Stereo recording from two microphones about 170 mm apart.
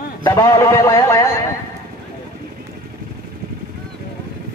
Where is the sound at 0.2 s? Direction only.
20° left (ahead or behind).